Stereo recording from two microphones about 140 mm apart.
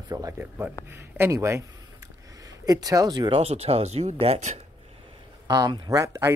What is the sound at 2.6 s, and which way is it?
Speech, 25° right (ahead or behind).